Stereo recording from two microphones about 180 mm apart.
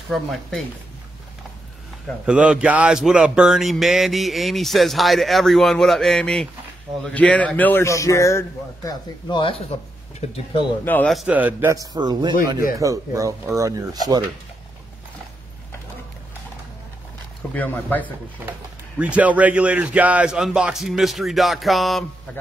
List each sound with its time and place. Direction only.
0.1 s speech: centre (ahead or behind)
2.2 s speech: 5° right (ahead or behind); by 10.7 s 25° left (ahead or behind)
10.9 s a man's voice: 5° left (ahead or behind); by 14.2 s 20° right (ahead or behind)
17.6 s speech: 10° left (ahead or behind)
18.9 s speech: 5° right (ahead or behind)